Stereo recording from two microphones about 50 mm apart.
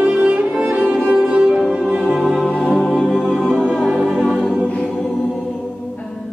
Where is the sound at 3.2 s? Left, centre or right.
Centre.